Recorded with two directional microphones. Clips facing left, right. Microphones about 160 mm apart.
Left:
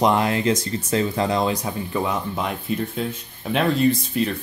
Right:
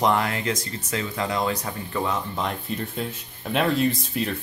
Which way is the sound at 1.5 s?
15° left (ahead or behind).